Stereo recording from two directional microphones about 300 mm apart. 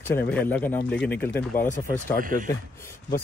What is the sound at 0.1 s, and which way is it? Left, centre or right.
Speech, centre.